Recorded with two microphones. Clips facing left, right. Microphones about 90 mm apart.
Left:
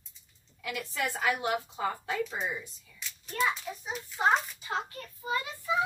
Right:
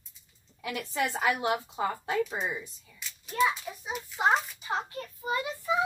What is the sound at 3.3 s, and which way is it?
A child's voice, 5° right (ahead or behind).